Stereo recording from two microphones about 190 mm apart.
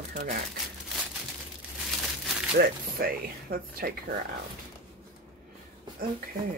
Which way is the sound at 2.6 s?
50° right (ahead or behind).